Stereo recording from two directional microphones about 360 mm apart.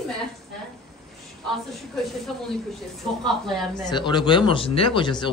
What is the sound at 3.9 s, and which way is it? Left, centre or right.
Speech, centre.